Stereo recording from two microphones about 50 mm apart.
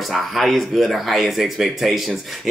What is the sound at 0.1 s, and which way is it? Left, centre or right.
Speech, centre.